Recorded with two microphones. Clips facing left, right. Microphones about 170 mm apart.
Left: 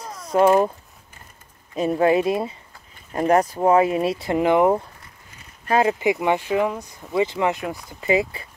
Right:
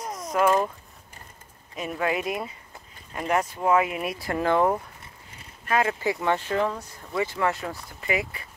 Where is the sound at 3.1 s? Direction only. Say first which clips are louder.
Left 7 dB; 40° left (ahead or behind); by 4.8 s 15° left (ahead or behind).